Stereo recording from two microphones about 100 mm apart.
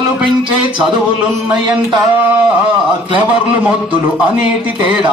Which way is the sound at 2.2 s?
15° right (ahead or behind).